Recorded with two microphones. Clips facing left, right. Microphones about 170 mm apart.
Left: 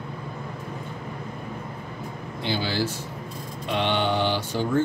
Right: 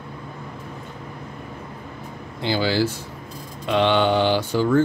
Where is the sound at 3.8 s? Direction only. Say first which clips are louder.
Right 6 dB; 90° right.